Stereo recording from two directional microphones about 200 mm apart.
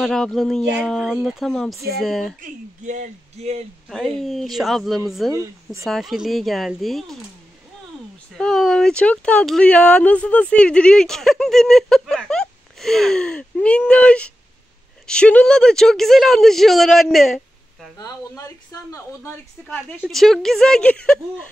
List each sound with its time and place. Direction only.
0.0 s speech: centre (ahead or behind)
2.4 s speech: 40° right (ahead or behind)
3.9 s speech: centre (ahead or behind)
5.3 s speech: 15° right (ahead or behind)
5.9 s speech: centre (ahead or behind)
8.4 s speech: centre (ahead or behind)
17.9 s speech: 15° left (ahead or behind)
20.0 s speech: centre (ahead or behind)